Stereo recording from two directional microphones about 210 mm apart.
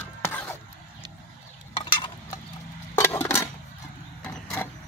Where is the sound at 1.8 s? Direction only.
25° left (ahead or behind).